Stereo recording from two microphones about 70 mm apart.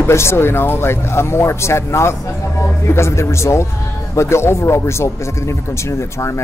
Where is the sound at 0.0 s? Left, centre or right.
Left.